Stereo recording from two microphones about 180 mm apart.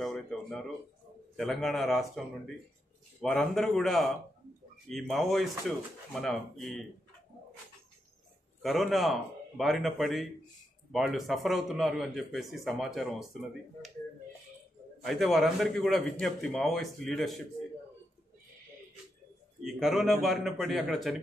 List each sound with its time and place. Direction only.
0.0 s a man's voice: centre (ahead or behind)
8.6 s a man's voice: centre (ahead or behind)
15.0 s a man's voice: centre (ahead or behind)
19.6 s a man's voice: centre (ahead or behind)